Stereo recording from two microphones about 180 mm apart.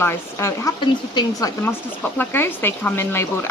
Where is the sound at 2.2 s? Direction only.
10° left (ahead or behind).